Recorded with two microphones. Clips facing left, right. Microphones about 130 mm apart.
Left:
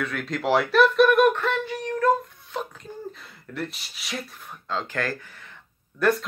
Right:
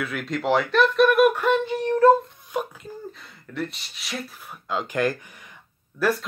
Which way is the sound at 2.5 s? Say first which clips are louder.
Right 4 dB; 15° right (ahead or behind).